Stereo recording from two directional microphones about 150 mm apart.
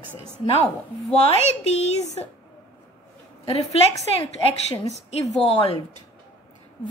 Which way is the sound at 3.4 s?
45° left (ahead or behind).